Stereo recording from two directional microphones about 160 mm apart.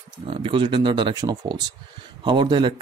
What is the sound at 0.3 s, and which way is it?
Speech, 35° right (ahead or behind).